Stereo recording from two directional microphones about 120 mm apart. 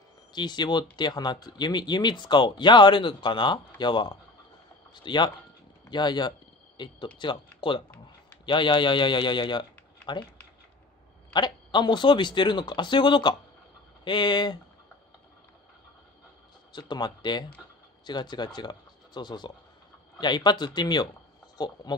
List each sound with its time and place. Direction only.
0.3 s speech: 40° left (ahead or behind)
11.3 s speech: 40° left (ahead or behind)
16.7 s speech: 35° left (ahead or behind)